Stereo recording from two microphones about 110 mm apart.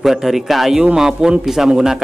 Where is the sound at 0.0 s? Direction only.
5° right (ahead or behind).